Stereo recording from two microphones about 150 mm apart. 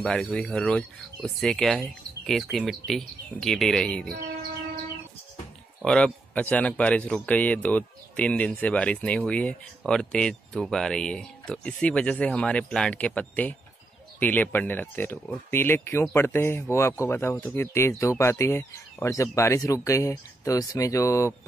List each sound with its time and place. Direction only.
0.0 s speech: 5° left (ahead or behind)
5.9 s a man's voice: 5° left (ahead or behind)